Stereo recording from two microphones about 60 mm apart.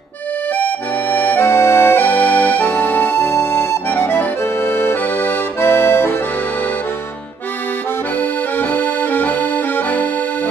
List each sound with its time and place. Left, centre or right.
1.1 s accordion: left
8.2 s accordion: left